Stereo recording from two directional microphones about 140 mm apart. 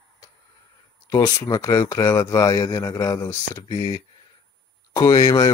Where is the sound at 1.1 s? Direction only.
20° left (ahead or behind).